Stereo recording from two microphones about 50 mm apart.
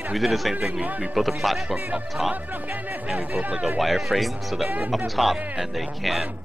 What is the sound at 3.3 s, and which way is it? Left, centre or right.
Speech, right.